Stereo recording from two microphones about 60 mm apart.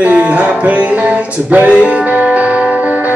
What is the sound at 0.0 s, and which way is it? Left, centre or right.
Music, right.